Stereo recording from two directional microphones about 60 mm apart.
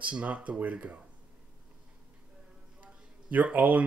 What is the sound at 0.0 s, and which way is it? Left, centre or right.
Speech, right.